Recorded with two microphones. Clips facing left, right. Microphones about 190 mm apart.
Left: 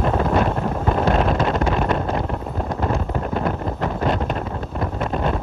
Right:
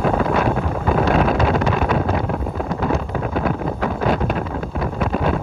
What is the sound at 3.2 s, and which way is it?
Wind noise, 5° right (ahead or behind).